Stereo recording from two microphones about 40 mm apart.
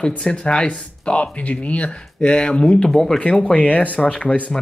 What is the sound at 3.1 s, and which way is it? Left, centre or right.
Speech, left.